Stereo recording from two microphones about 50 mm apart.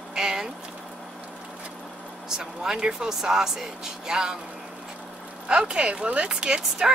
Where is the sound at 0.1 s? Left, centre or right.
Centre.